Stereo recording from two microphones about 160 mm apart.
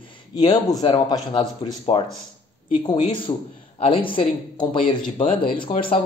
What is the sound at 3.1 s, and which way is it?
Speech, 30° left (ahead or behind).